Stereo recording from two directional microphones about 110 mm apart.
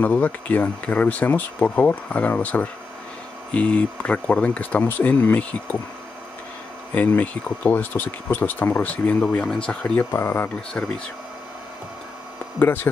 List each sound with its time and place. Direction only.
0.0 s speech: 15° left (ahead or behind)
6.9 s speech: 15° left (ahead or behind)
12.5 s speech: 15° left (ahead or behind)